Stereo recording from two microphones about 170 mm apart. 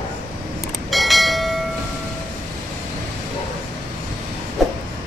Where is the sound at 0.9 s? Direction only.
Centre (ahead or behind).